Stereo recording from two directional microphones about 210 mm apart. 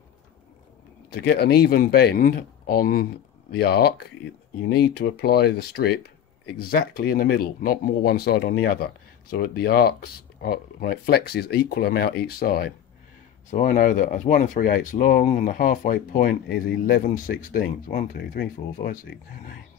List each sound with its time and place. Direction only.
1.1 s speech: 50° left (ahead or behind)